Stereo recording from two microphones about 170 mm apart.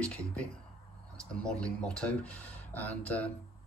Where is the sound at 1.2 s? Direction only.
5° left (ahead or behind).